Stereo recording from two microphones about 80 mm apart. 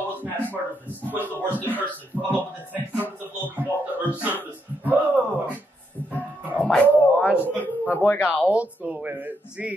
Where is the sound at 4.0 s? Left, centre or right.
Right.